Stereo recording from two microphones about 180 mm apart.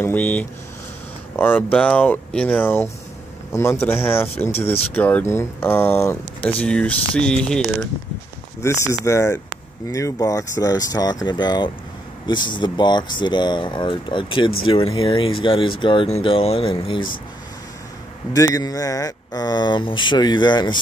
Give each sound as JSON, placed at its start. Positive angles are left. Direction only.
{"t": 0.0, "sound": "speech", "side_deg": 10}
{"t": 9.0, "sound": "speech", "side_deg": 15}
{"t": 18.3, "sound": "speech", "side_deg": 20}